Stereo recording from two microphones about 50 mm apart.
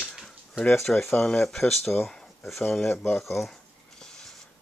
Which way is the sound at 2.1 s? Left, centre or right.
Centre.